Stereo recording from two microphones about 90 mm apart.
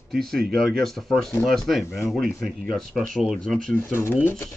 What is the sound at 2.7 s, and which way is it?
Speech, 5° left (ahead or behind).